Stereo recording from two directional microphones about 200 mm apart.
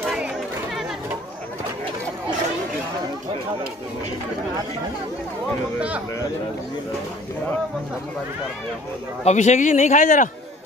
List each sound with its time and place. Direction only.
0.0 s chatter: 5° right (ahead or behind)
5.8 s speech: 5° right (ahead or behind)
9.2 s a man's voice: 35° left (ahead or behind)